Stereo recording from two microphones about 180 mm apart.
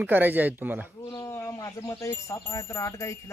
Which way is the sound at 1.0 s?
20° left (ahead or behind).